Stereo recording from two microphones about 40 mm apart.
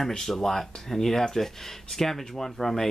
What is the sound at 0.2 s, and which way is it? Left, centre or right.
Speech, centre.